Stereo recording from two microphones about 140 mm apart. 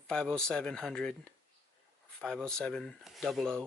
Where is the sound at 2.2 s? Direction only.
5° left (ahead or behind).